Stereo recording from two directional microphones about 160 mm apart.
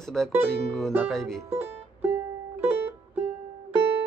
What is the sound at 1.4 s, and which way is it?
Music, 15° right (ahead or behind).